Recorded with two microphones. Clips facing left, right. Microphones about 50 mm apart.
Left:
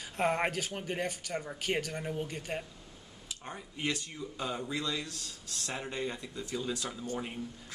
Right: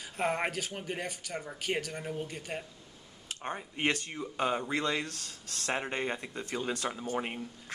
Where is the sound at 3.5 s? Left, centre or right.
Right.